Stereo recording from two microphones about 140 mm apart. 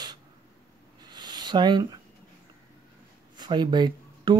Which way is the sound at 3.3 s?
30° right (ahead or behind).